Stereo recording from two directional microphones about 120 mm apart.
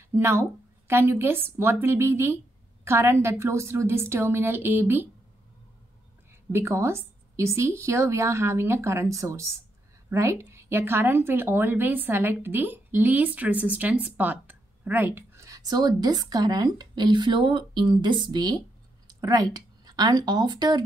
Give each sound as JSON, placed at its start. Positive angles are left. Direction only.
{"t": 0.1, "sound": "a woman's voice", "side_deg": -20}
{"t": 6.5, "sound": "a woman's voice", "side_deg": -20}